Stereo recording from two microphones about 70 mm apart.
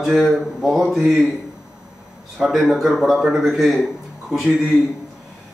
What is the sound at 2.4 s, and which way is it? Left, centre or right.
A man's voice, centre.